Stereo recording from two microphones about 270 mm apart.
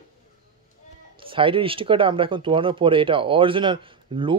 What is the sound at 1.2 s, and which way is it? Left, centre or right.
Speech, centre.